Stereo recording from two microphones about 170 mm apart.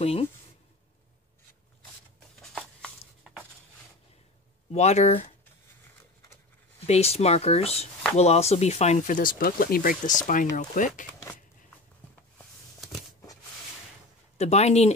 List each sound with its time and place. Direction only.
0.0 s speech: 35° left (ahead or behind)
2.4 s a sound: 5° left (ahead or behind)
4.7 s speech: 40° left (ahead or behind)
6.9 s speech: 40° left (ahead or behind)
14.4 s speech: 40° left (ahead or behind)